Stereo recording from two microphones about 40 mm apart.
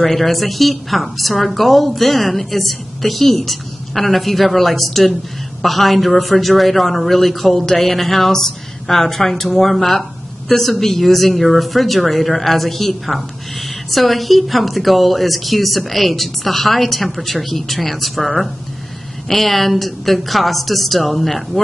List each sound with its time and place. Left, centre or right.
0.0 s a woman's voice: centre